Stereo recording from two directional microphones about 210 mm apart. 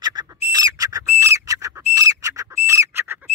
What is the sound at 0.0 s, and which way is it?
Bird, 20° right (ahead or behind).